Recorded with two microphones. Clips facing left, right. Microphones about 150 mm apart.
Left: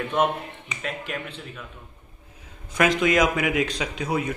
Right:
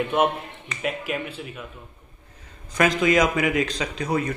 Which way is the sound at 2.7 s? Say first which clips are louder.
Right 1 dB; centre (ahead or behind).